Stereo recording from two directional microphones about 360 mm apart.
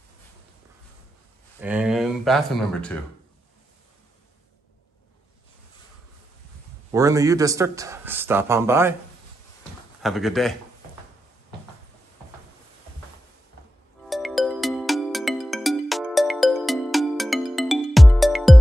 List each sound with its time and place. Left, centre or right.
1.6 s speech: centre
6.9 s speech: centre
10.0 s speech: centre
14.0 s music: centre